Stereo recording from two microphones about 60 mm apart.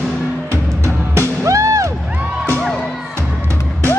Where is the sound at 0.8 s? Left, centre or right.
Right.